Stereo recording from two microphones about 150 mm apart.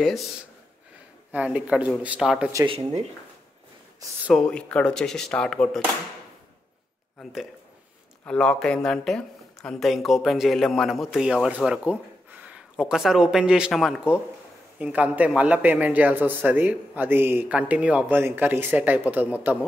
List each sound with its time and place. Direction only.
1.3 s a man's voice: 10° right (ahead or behind)
2.6 s speech: 35° right (ahead or behind)
4.3 s speech: 5° left (ahead or behind)
8.3 s a man's voice: 5° left (ahead or behind); by 19.6 s 10° right (ahead or behind)